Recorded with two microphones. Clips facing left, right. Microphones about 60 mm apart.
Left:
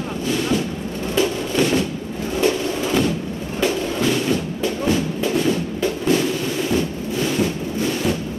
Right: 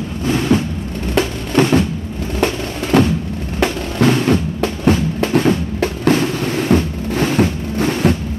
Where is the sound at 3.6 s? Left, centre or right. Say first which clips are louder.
Right 4 dB; right.